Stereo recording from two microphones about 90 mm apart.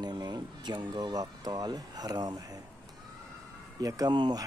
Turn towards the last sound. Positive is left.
turn(degrees=-50)  # may be behind; listen again after turning